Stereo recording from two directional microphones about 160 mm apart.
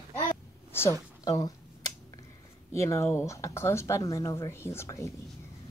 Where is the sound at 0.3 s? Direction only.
15° left (ahead or behind).